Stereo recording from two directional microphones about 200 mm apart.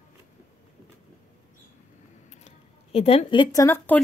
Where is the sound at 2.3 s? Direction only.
30° left (ahead or behind); by 4.0 s 10° left (ahead or behind).